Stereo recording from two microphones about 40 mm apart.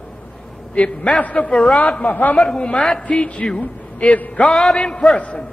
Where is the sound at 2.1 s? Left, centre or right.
Left.